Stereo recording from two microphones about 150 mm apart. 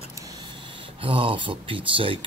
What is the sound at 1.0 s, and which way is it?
Speech, 35° right (ahead or behind).